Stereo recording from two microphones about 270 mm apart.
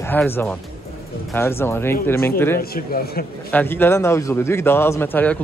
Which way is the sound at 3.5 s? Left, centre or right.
Centre.